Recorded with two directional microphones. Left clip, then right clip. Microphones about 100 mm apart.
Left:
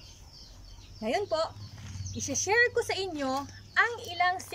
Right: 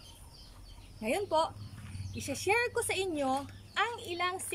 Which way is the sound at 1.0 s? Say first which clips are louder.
Left 1 dB; 25° right (ahead or behind).